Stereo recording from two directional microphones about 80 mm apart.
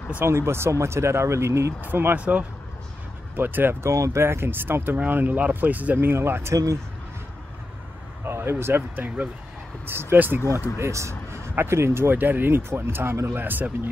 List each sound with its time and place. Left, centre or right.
0.2 s speech: right
3.9 s speech: right
6.5 s speech: right
8.3 s speech: right
10.8 s speech: right